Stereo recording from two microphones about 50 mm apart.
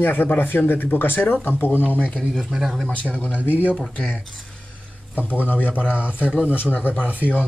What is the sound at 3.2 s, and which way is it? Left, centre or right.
Speech, left.